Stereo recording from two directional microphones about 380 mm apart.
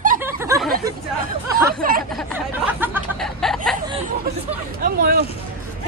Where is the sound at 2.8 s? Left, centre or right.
Centre.